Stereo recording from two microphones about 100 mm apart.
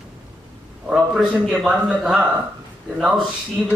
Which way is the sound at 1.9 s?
10° right (ahead or behind).